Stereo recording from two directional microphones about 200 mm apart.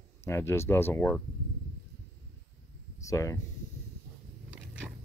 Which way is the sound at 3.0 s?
15° left (ahead or behind).